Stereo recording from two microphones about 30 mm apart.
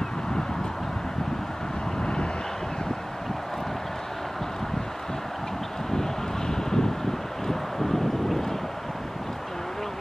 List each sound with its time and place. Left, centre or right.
5.9 s vehicle: centre
7.4 s boat: centre